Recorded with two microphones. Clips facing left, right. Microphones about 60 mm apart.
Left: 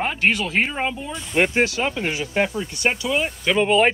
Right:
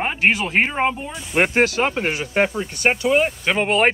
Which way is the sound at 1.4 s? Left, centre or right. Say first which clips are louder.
Right 3 dB; right.